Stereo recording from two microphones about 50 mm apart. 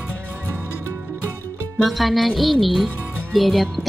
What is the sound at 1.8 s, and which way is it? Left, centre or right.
Speech, centre.